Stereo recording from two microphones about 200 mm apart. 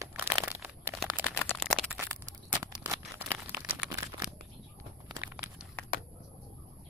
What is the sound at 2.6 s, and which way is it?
Tearing, 15° right (ahead or behind).